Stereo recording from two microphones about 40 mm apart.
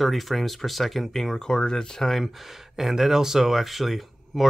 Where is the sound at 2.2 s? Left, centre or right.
Centre.